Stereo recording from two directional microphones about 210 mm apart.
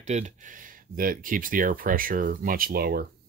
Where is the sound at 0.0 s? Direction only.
35° right (ahead or behind).